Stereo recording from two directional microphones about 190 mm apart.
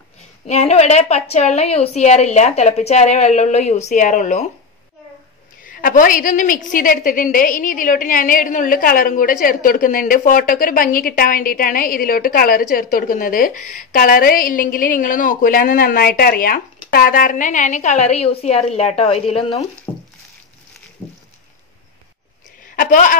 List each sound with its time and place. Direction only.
0.5 s a woman's voice: 35° left (ahead or behind)
5.7 s a woman's voice: 45° left (ahead or behind)
19.9 s a sound: 15° left (ahead or behind)
22.8 s a woman's voice: 45° left (ahead or behind)